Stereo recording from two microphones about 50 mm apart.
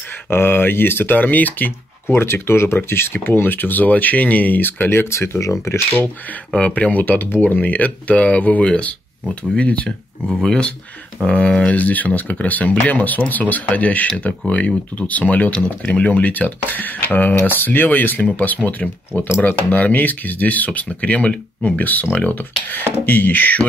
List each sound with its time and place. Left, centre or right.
0.3 s speech: left
2.0 s speech: left
5.1 s speech: left
6.7 s speech: left; by 10.7 s centre
11.2 s speech: left
22.1 s speech: left